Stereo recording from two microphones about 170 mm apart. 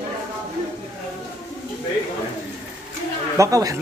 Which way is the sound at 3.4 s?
20° right (ahead or behind).